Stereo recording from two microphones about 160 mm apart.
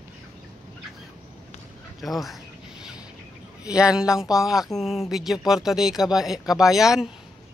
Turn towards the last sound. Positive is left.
turn(degrees=-5)  # may be behind; listen again after turning